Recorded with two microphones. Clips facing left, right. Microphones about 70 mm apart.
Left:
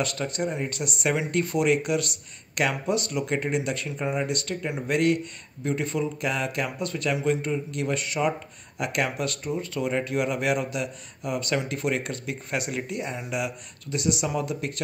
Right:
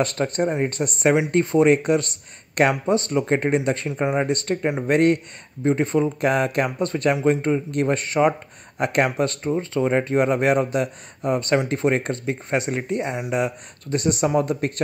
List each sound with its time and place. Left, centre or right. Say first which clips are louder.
0.0 s speech: right 6 dB; right
1.1 s speech: right 7 dB; right